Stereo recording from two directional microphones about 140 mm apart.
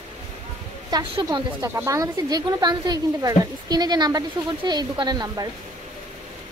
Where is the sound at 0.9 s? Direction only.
30° right (ahead or behind).